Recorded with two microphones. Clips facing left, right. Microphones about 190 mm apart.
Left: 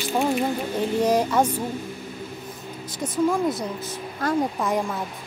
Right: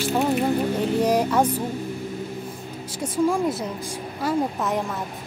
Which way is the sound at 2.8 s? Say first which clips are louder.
Right 1 dB; 10° right (ahead or behind).